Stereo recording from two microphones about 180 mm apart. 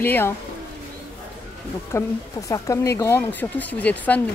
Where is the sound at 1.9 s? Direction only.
15° left (ahead or behind).